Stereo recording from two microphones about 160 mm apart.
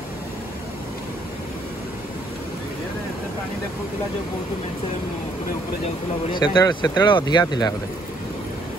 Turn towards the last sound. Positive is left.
turn(degrees=25)  # may be behind; listen again after turning